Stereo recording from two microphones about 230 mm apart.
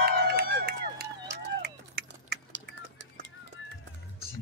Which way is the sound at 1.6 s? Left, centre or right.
Right.